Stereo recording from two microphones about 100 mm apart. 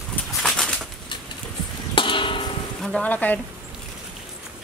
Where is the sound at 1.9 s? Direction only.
55° left (ahead or behind).